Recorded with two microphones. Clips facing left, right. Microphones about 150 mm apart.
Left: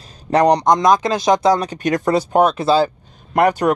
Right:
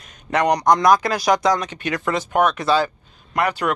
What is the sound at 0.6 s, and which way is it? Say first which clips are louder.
Speech: left 1 dB; 20° left (ahead or behind).